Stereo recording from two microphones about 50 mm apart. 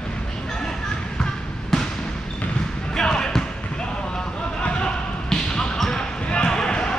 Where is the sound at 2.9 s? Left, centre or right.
Centre.